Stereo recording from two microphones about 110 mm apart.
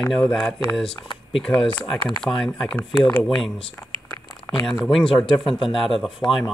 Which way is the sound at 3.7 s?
30° left (ahead or behind).